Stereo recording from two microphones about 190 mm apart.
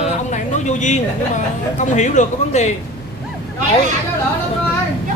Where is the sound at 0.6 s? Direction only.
40° left (ahead or behind).